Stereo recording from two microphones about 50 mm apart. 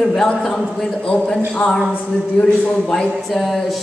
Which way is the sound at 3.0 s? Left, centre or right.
Centre.